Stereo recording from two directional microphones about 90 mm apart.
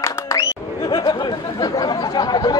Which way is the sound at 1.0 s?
50° left (ahead or behind).